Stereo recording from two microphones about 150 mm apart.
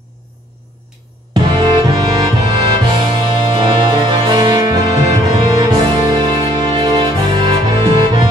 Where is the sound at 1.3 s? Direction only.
30° right (ahead or behind).